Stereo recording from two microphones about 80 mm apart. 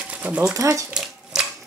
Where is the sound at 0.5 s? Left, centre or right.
Right.